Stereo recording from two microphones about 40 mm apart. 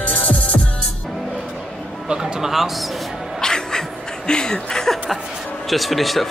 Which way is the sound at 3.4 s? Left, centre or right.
Centre.